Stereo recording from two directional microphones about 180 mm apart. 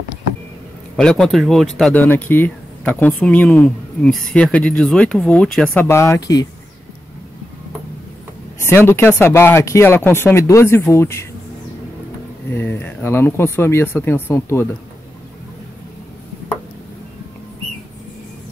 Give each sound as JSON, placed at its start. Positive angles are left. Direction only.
{"t": 0.9, "sound": "speech", "side_deg": 5}
{"t": 5.9, "sound": "speech", "side_deg": 15}
{"t": 8.5, "sound": "speech", "side_deg": 15}
{"t": 12.4, "sound": "speech", "side_deg": 10}